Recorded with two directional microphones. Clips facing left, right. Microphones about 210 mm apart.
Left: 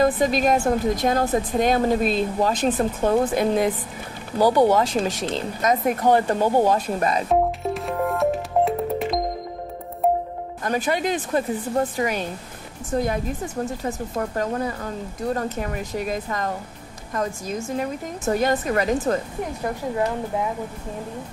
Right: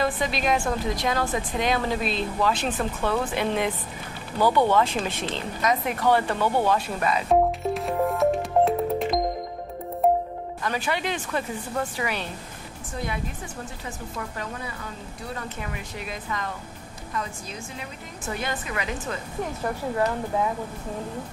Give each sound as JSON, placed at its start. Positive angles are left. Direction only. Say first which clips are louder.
{"t": 0.0, "sound": "speech", "louder": "left 6 dB", "side_deg": 45}
{"t": 7.2, "sound": "music", "louder": "even", "side_deg": 0}
{"t": 10.6, "sound": "speech", "louder": "left 5 dB", "side_deg": 45}